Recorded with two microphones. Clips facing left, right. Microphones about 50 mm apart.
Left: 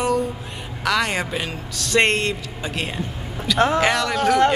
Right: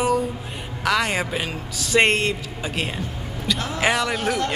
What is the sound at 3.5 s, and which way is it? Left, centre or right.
Speech, left.